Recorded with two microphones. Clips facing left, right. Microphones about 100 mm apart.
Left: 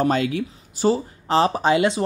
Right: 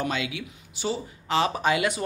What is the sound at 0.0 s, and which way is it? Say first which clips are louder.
Speech: left 9 dB; 40° left (ahead or behind).